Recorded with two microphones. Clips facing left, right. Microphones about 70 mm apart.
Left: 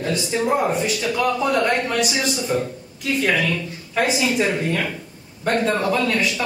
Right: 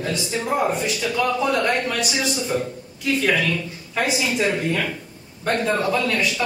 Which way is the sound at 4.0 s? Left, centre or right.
Left.